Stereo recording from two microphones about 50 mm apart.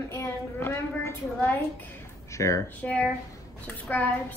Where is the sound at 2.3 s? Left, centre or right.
Left.